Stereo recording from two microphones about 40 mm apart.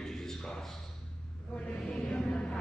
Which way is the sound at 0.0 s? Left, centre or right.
Centre.